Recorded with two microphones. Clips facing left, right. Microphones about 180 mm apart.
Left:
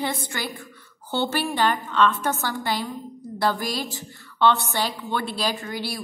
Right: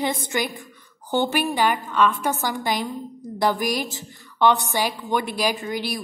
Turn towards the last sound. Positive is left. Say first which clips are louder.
# right 3 dB
turn(degrees=-20)  # may be behind; listen again after turning